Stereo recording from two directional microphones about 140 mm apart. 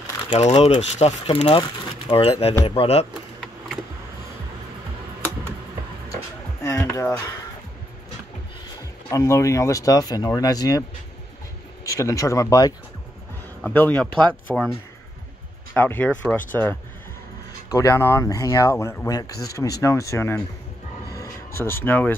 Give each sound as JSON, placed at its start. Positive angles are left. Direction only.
{"t": 0.5, "sound": "speech", "side_deg": 40}
{"t": 0.7, "sound": "speech", "side_deg": 50}
{"t": 6.6, "sound": "a sound", "side_deg": 20}
{"t": 9.1, "sound": "speech", "side_deg": 20}
{"t": 11.8, "sound": "speech", "side_deg": 20}
{"t": 13.6, "sound": "speech", "side_deg": 10}
{"t": 15.7, "sound": "speech", "side_deg": 15}
{"t": 21.1, "sound": "a sound", "side_deg": 20}